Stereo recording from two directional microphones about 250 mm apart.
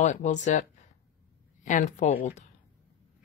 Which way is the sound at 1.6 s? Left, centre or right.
Left.